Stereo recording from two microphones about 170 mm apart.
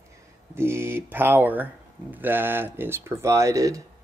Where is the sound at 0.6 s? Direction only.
15° right (ahead or behind).